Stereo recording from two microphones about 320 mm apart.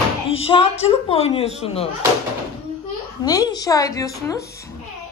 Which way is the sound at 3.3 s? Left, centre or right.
Centre.